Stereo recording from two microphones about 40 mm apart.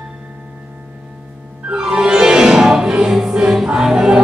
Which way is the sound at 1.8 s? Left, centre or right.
Centre.